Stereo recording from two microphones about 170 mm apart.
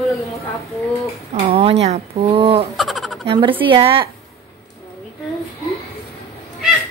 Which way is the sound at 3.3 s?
30° right (ahead or behind).